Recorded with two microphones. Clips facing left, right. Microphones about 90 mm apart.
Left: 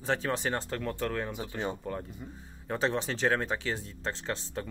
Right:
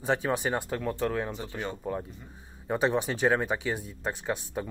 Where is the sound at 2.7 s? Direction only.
15° right (ahead or behind).